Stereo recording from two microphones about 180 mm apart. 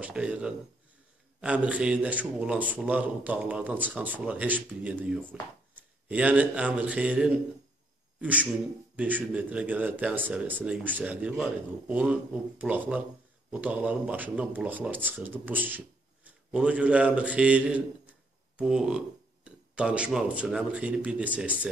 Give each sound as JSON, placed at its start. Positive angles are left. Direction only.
{"t": 0.0, "sound": "a man's voice", "side_deg": -5}